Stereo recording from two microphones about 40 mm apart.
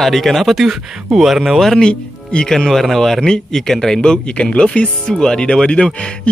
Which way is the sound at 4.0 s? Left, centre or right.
Left.